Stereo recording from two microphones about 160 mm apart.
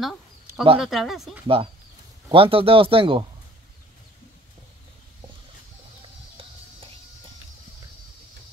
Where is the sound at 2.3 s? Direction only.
35° right (ahead or behind).